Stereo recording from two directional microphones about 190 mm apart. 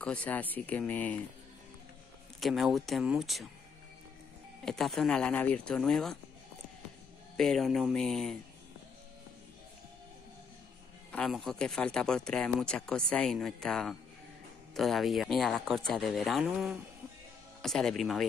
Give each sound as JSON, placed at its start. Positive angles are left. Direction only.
{"t": 0.0, "sound": "speech", "side_deg": 5}
{"t": 2.4, "sound": "speech", "side_deg": 0}
{"t": 4.6, "sound": "speech", "side_deg": 0}
{"t": 7.3, "sound": "speech", "side_deg": 0}
{"t": 11.1, "sound": "speech", "side_deg": 5}